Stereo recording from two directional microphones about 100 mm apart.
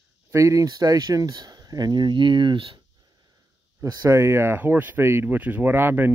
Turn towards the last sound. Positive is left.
turn(degrees=-20)  # may be behind; listen again after turning